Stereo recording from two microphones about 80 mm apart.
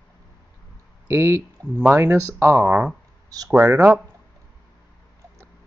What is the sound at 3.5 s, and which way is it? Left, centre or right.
Speech, right.